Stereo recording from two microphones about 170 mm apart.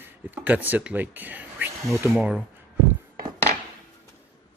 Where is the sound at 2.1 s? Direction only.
5° right (ahead or behind).